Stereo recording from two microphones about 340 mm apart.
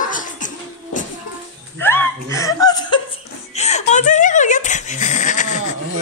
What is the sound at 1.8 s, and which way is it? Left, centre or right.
Speech, centre.